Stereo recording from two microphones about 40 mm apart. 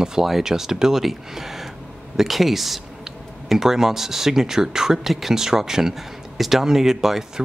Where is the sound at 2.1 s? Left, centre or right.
Centre.